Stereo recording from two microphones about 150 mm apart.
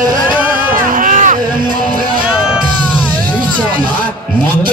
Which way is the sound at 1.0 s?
60° right (ahead or behind).